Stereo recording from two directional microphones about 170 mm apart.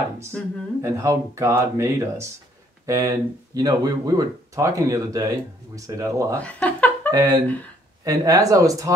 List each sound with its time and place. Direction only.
0.8 s speech: 15° right (ahead or behind)
6.4 s speech: 10° left (ahead or behind)
7.1 s speech: 20° right (ahead or behind)
7.4 s speech: 10° left (ahead or behind)
8.0 s speech: 20° right (ahead or behind)